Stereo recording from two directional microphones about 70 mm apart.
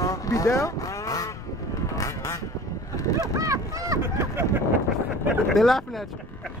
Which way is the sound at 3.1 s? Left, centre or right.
Right.